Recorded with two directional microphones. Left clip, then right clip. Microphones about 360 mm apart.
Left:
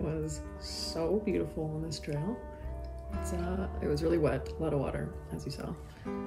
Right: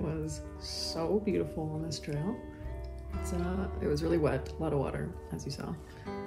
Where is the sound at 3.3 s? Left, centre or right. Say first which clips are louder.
Right 1 dB; centre.